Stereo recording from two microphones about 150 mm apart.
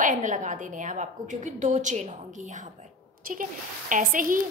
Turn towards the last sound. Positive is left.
turn(degrees=-65)  # may be behind; listen again after turning